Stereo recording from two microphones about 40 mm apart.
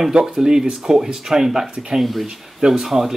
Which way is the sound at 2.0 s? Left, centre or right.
Centre.